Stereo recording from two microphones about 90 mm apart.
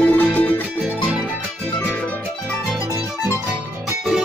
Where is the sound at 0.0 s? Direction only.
15° left (ahead or behind).